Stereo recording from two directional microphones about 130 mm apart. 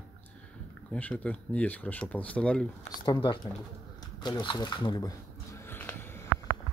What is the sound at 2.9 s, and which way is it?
Speech, 35° left (ahead or behind).